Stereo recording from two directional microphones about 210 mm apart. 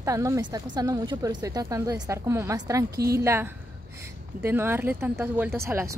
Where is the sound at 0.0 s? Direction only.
15° right (ahead or behind).